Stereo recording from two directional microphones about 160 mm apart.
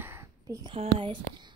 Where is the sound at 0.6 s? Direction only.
35° right (ahead or behind).